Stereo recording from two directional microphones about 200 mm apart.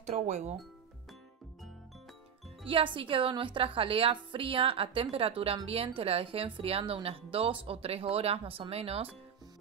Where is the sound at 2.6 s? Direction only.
25° right (ahead or behind).